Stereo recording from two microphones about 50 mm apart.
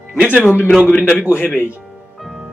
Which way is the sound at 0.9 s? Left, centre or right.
Left.